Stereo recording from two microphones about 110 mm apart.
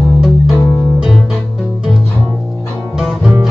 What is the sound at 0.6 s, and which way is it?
Music, 30° left (ahead or behind).